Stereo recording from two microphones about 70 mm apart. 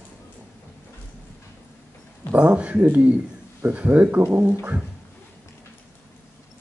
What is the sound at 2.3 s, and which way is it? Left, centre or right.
Speech, centre.